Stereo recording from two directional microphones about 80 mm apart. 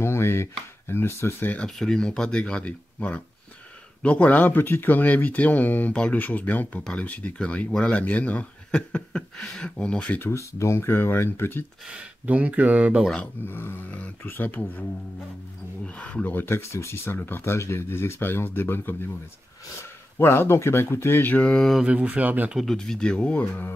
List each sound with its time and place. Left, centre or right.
0.0 s speech: left
1.6 s speech: centre
10.2 s speech: left
11.8 s speech: centre
13.5 s speech: left
21.4 s speech: centre
21.8 s speech: centre
22.5 s speech: centre
22.8 s speech: centre
23.4 s speech: left